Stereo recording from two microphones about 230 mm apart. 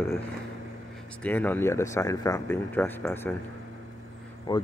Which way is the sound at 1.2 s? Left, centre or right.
Centre.